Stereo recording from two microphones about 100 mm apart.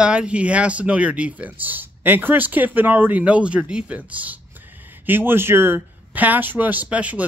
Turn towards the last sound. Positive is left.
turn(degrees=-15)  # may be behind; listen again after turning